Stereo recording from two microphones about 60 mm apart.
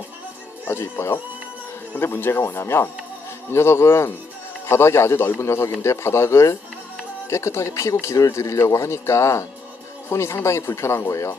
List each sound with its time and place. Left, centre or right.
0.7 s speech: left
2.0 s speech: left